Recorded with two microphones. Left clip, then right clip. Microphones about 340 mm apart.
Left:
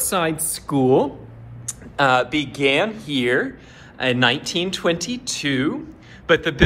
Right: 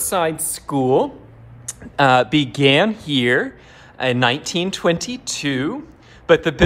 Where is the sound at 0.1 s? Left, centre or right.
Right.